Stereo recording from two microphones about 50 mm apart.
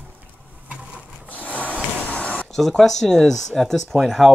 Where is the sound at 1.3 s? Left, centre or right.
Left.